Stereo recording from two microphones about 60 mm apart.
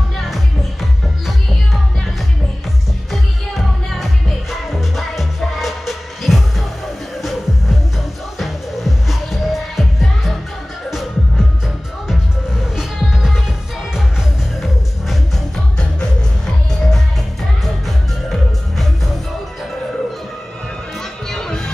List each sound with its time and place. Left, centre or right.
3.1 s music: centre
14.6 s music: centre
15.8 s music: centre
21.3 s music: centre